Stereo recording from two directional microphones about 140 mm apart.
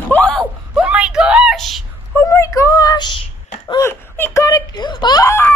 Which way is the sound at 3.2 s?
40° left (ahead or behind).